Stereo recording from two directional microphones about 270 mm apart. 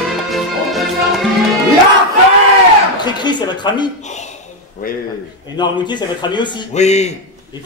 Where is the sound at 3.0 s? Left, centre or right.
Centre.